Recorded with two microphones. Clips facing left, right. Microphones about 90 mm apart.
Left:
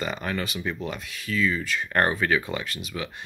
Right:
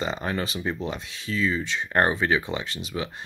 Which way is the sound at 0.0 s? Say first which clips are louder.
Right 1 dB; 25° right (ahead or behind).